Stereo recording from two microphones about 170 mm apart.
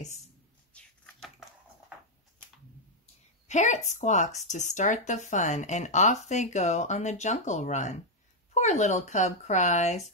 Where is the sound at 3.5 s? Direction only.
45° left (ahead or behind).